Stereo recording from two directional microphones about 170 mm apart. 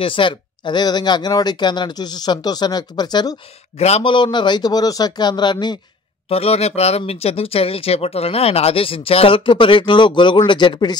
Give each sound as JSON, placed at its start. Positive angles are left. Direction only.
{"t": 0.0, "sound": "speech", "side_deg": 30}
{"t": 3.7, "sound": "speech", "side_deg": 40}
{"t": 6.2, "sound": "speech", "side_deg": 35}